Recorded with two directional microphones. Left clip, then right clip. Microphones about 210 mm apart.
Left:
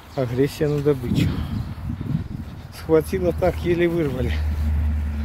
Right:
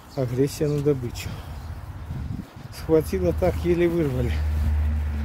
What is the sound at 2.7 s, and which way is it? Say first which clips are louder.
Speech: left 2 dB; 5° right (ahead or behind).